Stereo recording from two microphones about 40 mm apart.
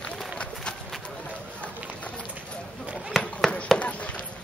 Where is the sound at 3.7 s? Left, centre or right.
Left.